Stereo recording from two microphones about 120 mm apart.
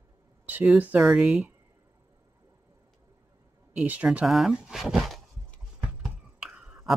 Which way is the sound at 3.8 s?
10° right (ahead or behind).